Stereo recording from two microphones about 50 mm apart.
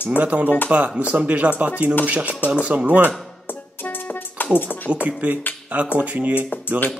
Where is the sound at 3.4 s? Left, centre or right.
Left.